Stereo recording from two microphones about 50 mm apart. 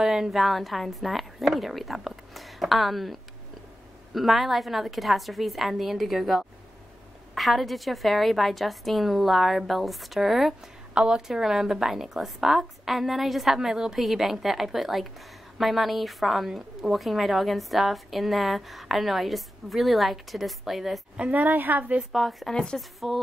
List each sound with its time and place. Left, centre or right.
0.0 s a woman's voice: centre
11.0 s a woman's voice: centre
21.2 s a woman's voice: right
22.1 s a woman's voice: centre
22.5 s speech: centre
22.8 s a woman's voice: centre